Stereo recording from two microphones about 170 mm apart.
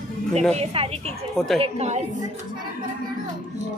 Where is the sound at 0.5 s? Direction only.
35° right (ahead or behind).